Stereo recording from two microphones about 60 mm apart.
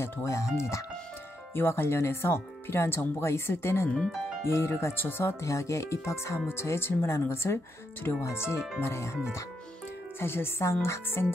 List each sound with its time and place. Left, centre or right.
0.0 s speech: left
1.5 s speech: left
3.9 s speech: centre
4.5 s speech: left